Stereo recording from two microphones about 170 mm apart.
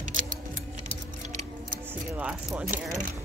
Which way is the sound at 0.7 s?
45° right (ahead or behind).